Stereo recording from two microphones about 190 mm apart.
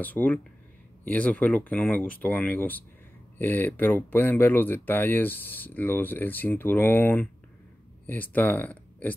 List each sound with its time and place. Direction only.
0.0 s speech: 10° left (ahead or behind)